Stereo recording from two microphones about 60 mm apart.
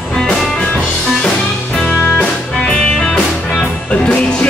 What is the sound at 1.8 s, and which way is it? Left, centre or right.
Music, centre.